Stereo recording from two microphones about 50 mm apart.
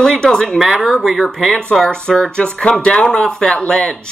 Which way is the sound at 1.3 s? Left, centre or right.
Centre.